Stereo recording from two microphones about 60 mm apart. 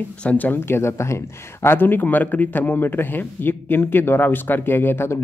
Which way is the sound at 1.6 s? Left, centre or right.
Left.